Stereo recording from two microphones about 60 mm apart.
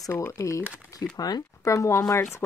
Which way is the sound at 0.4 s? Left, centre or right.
Left.